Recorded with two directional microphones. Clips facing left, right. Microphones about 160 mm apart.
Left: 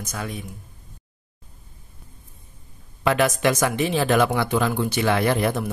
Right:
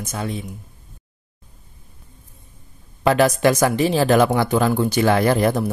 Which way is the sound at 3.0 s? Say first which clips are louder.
Right 4 dB; 35° right (ahead or behind).